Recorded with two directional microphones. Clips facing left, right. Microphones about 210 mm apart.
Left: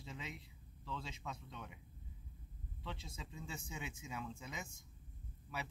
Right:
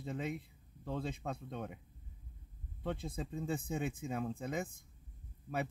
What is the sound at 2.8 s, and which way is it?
A man's voice, 55° right (ahead or behind).